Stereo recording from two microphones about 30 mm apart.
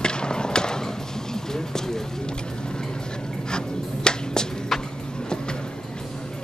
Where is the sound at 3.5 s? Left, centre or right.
Left.